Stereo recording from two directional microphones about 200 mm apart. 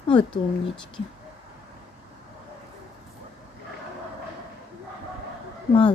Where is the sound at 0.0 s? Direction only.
25° left (ahead or behind).